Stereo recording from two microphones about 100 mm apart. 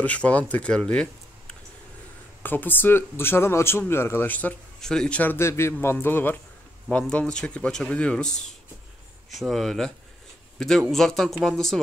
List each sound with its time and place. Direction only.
0.0 s speech: 15° left (ahead or behind)
2.4 s speech: 20° left (ahead or behind)
9.3 s speech: centre (ahead or behind)